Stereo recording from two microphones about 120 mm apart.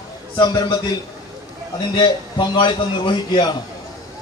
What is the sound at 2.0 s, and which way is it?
A man's voice, 40° left (ahead or behind).